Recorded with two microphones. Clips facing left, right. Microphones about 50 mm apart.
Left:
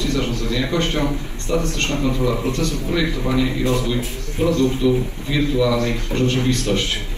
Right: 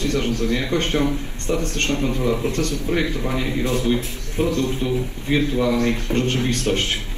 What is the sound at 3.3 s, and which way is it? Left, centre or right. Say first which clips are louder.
A man's voice: left 4 dB; left.